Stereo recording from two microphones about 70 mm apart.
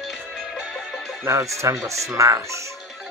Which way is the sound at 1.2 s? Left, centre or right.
Right.